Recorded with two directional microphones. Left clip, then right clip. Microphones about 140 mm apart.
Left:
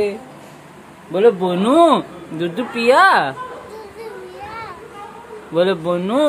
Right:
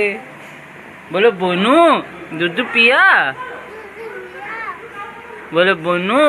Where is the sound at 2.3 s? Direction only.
25° left (ahead or behind).